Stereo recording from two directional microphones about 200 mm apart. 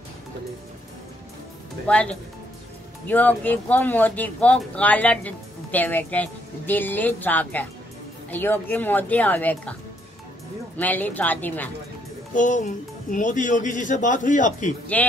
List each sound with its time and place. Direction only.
1.9 s speech: 5° left (ahead or behind)
10.8 s speech: 10° left (ahead or behind)
12.4 s speech: 40° left (ahead or behind)
14.9 s speech: 5° left (ahead or behind)